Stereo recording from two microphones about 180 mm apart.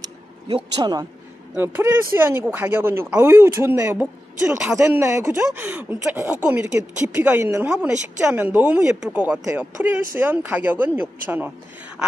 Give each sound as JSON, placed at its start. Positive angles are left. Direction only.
{"t": 0.7, "sound": "a man's voice", "side_deg": -25}
{"t": 1.5, "sound": "speech", "side_deg": -10}